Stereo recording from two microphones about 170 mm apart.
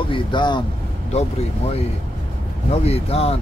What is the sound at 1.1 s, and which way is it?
Speech, 40° left (ahead or behind).